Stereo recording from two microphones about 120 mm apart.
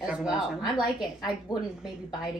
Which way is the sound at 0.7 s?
35° left (ahead or behind).